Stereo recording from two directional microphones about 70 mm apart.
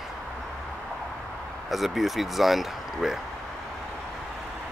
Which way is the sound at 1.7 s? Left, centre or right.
Centre.